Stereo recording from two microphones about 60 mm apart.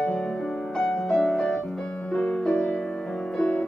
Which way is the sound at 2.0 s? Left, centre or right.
Centre.